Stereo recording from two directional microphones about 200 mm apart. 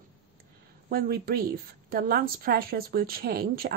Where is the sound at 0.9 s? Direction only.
50° right (ahead or behind).